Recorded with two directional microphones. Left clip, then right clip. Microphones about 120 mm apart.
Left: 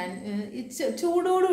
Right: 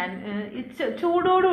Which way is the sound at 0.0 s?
25° left (ahead or behind).